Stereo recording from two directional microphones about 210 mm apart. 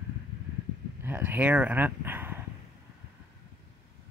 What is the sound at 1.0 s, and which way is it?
Speech, 10° right (ahead or behind).